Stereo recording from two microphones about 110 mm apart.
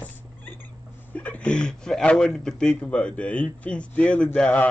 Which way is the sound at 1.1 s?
15° left (ahead or behind).